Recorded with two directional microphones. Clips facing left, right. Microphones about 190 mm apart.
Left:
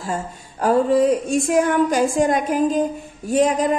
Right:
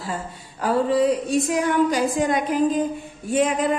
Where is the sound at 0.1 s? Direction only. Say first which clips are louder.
Left 6 dB; 45° left (ahead or behind).